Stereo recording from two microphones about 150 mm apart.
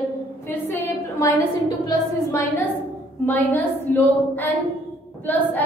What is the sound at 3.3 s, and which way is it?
A woman's voice, 10° left (ahead or behind).